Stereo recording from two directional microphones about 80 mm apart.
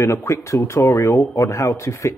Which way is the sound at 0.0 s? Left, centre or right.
Left.